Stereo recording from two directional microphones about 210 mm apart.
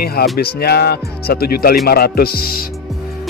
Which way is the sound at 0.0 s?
45° left (ahead or behind).